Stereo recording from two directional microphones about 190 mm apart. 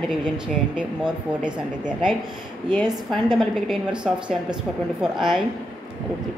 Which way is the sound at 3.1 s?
Centre (ahead or behind).